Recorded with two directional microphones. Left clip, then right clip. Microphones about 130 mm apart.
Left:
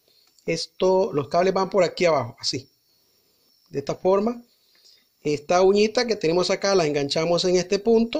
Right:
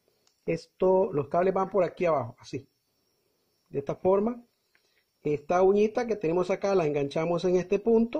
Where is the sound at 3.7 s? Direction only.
15° right (ahead or behind).